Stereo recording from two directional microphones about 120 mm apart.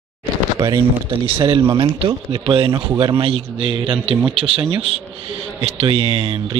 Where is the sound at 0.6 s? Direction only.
30° right (ahead or behind).